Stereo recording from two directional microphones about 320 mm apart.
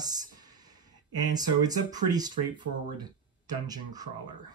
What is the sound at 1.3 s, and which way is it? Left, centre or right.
Speech, centre.